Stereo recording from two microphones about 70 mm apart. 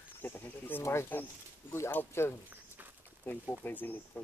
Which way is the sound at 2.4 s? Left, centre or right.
Right.